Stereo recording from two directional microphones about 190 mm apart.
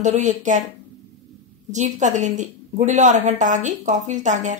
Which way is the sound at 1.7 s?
40° right (ahead or behind).